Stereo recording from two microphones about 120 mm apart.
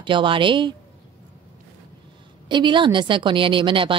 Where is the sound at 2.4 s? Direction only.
40° right (ahead or behind).